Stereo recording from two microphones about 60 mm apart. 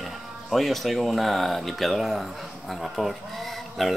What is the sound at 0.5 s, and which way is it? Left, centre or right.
Speech, centre.